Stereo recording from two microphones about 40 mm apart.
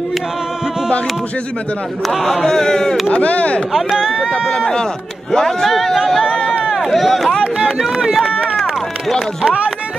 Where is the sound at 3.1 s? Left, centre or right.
Left.